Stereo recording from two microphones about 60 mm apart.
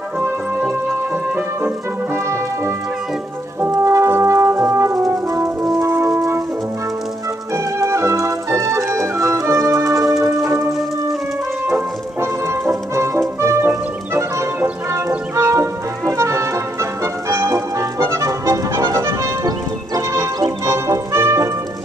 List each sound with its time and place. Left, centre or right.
2.1 s brass instrument: right
6.1 s brass instrument: right
7.5 s music: right
12.2 s music: right
20.0 s music: right